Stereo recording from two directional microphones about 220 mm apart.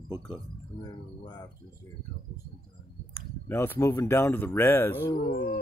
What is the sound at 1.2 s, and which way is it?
Speech, 20° left (ahead or behind).